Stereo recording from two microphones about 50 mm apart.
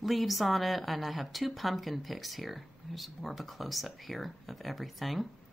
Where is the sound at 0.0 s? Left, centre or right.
Centre.